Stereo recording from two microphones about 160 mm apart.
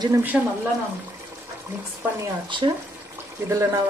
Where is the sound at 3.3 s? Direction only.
15° right (ahead or behind).